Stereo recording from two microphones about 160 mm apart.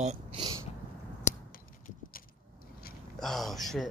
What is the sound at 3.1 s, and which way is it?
Speech, centre (ahead or behind).